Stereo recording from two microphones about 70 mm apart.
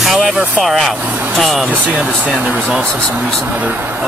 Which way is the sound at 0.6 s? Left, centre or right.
Centre.